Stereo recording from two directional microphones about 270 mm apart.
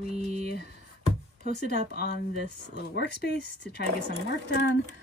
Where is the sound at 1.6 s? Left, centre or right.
Left.